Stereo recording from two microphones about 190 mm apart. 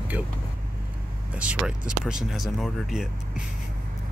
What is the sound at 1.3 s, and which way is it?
Speech, 5° right (ahead or behind).